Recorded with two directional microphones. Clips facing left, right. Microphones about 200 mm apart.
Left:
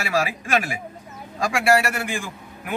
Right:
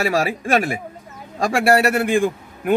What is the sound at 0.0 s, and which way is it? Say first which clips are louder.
A man's voice: right 4 dB; 50° right (ahead or behind).